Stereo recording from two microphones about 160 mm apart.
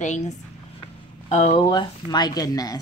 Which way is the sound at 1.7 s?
25° left (ahead or behind).